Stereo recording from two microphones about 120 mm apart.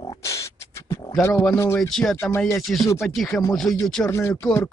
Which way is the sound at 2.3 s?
20° left (ahead or behind).